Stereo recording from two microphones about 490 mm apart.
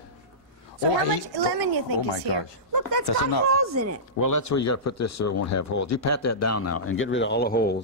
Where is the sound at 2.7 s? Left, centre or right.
Right.